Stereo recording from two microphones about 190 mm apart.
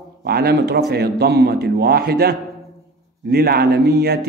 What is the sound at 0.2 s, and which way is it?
Speech, 55° right (ahead or behind).